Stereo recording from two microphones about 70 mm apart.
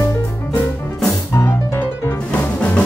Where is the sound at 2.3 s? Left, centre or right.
Centre.